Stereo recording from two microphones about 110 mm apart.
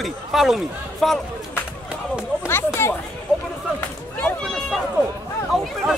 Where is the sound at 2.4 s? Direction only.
20° left (ahead or behind).